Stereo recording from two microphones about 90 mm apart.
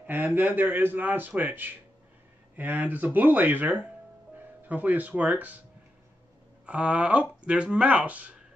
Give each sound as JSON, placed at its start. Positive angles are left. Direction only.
{"t": 0.0, "sound": "speech", "side_deg": -20}
{"t": 6.6, "sound": "speech", "side_deg": -15}